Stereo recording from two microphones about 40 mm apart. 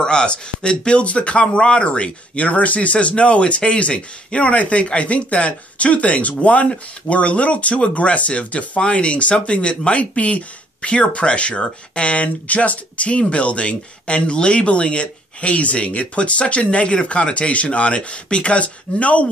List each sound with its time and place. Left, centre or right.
0.0 s speech: left